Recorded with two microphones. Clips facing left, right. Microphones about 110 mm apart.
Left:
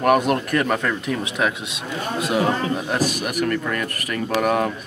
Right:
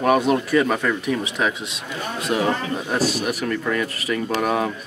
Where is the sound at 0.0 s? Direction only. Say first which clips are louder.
Even; centre (ahead or behind).